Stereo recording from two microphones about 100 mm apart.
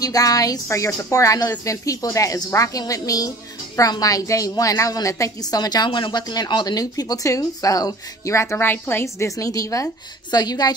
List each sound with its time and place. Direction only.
0.0 s a woman's voice: 35° left (ahead or behind)